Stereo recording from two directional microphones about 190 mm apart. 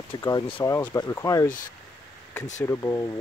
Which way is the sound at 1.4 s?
45° left (ahead or behind).